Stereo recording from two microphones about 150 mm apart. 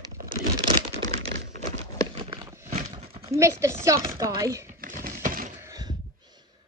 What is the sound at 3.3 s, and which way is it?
A woman's voice, 20° right (ahead or behind).